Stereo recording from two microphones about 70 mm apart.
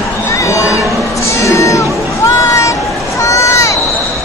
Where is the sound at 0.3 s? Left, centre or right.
Left.